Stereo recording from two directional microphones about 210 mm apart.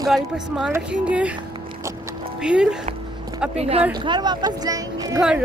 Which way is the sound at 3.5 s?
30° right (ahead or behind).